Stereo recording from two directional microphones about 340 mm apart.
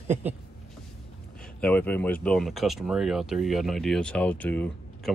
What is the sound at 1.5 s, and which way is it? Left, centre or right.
Speech, centre.